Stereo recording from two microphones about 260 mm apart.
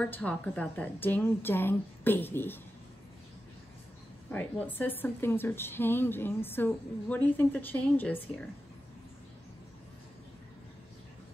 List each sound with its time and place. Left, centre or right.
0.0 s a woman's voice: centre
4.3 s a woman's voice: centre